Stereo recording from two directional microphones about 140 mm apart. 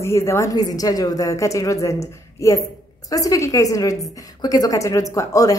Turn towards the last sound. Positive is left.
turn(degrees=25)  # may be behind; listen again after turning